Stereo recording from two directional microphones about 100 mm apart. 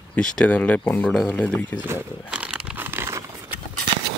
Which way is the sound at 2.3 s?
10° right (ahead or behind).